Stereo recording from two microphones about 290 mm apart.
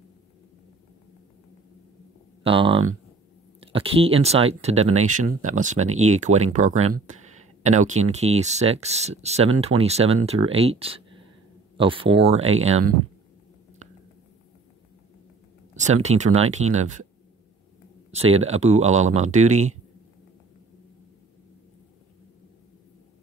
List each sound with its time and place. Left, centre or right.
2.4 s speech: centre
15.7 s speech: right
18.1 s speech: right